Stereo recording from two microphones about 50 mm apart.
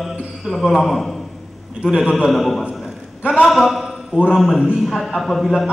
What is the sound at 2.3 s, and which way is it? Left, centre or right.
A man's voice, centre.